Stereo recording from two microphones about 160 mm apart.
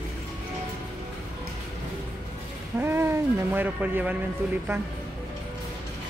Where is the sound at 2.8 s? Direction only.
15° right (ahead or behind).